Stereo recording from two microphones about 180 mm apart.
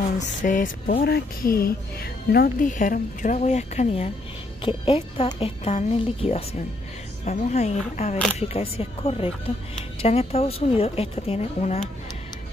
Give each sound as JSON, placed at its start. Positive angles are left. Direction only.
{"t": 0.4, "sound": "speech", "side_deg": 45}